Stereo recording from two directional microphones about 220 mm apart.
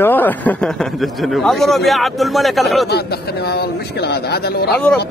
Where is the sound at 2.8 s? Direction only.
45° left (ahead or behind).